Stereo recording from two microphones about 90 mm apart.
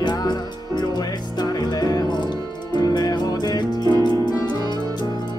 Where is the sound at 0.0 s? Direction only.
50° left (ahead or behind).